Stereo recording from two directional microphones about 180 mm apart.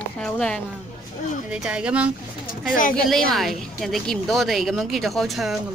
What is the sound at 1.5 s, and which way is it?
Speech, 5° right (ahead or behind).